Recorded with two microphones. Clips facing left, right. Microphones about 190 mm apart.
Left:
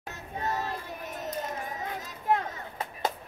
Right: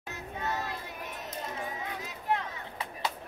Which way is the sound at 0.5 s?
40° left (ahead or behind).